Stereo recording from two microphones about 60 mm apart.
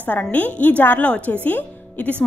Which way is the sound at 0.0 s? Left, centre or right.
Left.